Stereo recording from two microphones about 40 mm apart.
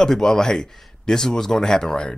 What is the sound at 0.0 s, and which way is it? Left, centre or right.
Speech, centre.